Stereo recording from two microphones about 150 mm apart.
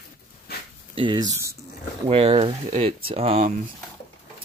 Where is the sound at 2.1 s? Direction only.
40° right (ahead or behind).